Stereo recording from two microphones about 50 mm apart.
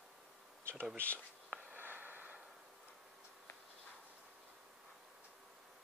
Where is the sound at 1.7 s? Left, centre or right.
Right.